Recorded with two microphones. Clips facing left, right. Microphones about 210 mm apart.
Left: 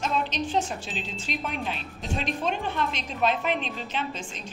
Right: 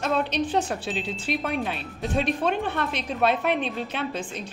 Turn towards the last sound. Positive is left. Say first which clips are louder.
# right 3 dB
turn(degrees=-55)  # may be behind; listen again after turning